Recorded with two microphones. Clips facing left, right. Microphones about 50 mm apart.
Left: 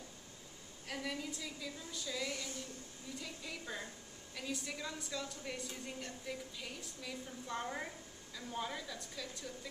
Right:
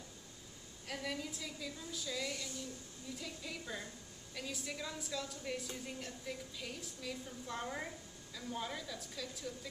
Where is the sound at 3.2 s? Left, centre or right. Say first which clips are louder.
Even; centre.